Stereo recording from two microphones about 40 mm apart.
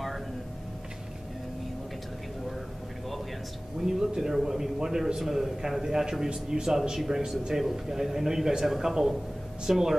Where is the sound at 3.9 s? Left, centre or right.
Centre.